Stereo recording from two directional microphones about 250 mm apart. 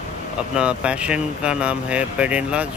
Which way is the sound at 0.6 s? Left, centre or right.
Centre.